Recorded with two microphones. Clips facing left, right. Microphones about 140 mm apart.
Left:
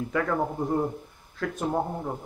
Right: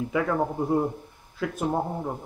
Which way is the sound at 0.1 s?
5° right (ahead or behind).